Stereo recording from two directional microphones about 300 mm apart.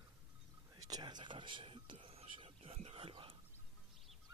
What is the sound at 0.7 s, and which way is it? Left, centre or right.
Whispering, centre.